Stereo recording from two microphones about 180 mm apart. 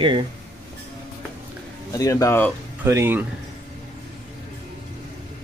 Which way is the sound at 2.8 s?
15° right (ahead or behind).